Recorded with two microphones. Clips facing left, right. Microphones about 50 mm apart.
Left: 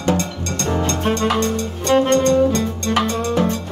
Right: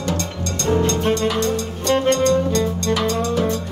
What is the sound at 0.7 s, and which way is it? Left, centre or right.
Music, centre.